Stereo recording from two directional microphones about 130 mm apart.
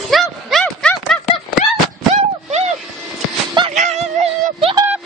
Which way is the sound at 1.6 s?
80° left.